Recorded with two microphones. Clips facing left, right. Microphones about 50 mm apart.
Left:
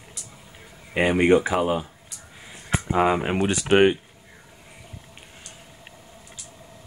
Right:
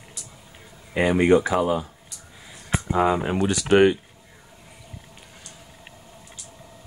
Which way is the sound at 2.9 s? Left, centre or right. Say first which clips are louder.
Even; left.